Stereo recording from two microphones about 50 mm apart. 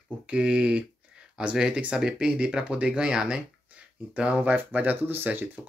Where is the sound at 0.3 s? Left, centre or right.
Right.